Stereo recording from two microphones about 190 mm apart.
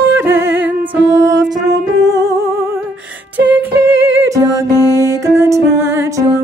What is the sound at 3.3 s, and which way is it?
A capella, 10° right (ahead or behind).